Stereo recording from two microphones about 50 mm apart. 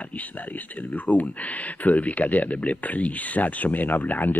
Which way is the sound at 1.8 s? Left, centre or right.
Left.